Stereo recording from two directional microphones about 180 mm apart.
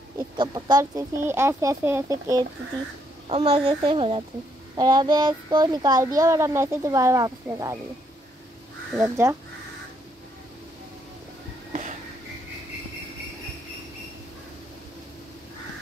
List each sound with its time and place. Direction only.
0.4 s speech: 20° right (ahead or behind)
3.3 s a child's voice: 35° right (ahead or behind)
8.9 s speech: 10° right (ahead or behind)